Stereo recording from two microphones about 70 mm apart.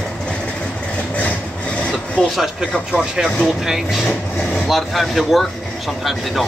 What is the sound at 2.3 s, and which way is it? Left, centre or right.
Speech, centre.